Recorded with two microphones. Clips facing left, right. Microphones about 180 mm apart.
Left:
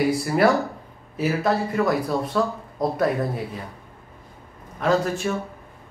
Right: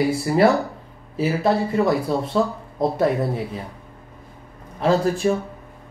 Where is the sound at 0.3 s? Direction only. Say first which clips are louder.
Right 4 dB; 20° right (ahead or behind).